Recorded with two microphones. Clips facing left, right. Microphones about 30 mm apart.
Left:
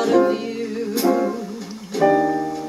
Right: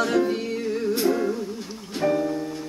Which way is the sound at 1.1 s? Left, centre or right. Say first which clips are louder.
Left 5 dB; left.